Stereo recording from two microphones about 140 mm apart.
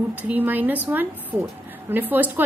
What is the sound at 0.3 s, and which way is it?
Speech, 15° right (ahead or behind).